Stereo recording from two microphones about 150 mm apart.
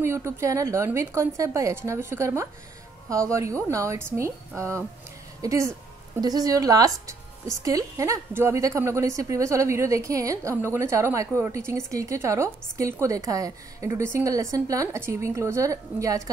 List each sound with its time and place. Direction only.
0.0 s a woman's voice: 15° right (ahead or behind)